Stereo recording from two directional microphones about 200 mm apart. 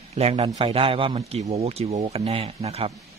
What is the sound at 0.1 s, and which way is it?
A man's voice, 30° right (ahead or behind).